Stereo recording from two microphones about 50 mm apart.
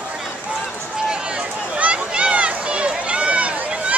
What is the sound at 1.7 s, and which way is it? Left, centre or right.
Run, right.